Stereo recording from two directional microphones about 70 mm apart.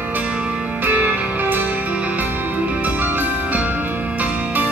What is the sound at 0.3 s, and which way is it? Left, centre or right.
Music, centre.